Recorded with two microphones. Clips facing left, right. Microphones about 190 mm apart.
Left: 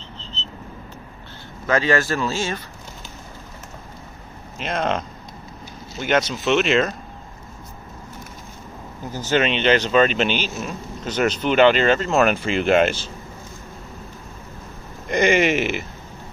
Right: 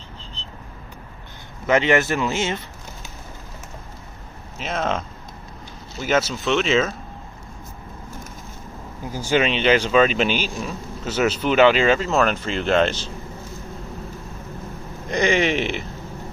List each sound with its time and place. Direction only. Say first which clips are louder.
0.2 s a sound: left 3 dB; 10° right (ahead or behind)
1.7 s speech: right 2 dB; 20° right (ahead or behind)
4.6 s speech: left 1 dB; centre (ahead or behind)
9.1 s speech: even; 10° right (ahead or behind)
11.0 s speech: even; 5° right (ahead or behind)
12.2 s speech: left 2 dB; 10° left (ahead or behind)
15.0 s speech: left 2 dB; centre (ahead or behind)